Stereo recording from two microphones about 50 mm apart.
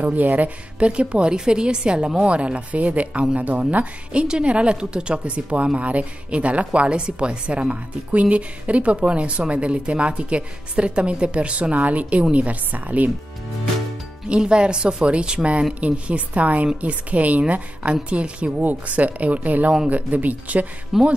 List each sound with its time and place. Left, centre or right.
0.0 s a woman's voice: right
4.1 s a woman's voice: right
14.2 s a woman's voice: centre
20.9 s speech: centre